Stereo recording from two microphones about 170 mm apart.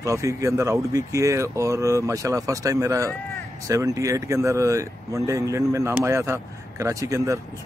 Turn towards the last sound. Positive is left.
turn(degrees=-20)  # may be behind; listen again after turning